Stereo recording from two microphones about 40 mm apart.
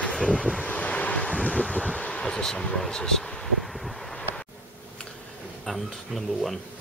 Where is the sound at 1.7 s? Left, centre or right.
Centre.